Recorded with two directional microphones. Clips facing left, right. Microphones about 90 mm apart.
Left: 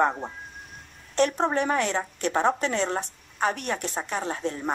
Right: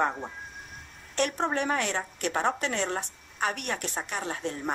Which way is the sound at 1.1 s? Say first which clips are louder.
Left 5 dB; 35° left (ahead or behind).